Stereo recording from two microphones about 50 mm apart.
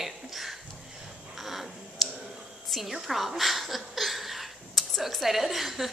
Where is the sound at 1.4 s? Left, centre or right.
Centre.